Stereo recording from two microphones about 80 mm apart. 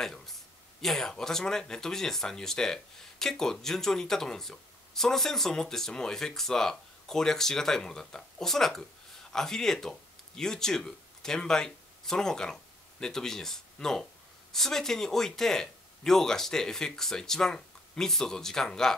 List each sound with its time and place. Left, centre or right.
0.0 s speech: centre